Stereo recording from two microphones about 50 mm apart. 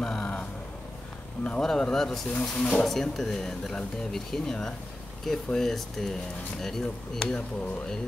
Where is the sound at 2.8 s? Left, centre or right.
Centre.